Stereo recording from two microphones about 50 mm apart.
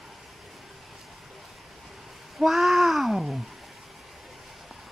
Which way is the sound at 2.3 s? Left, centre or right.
Centre.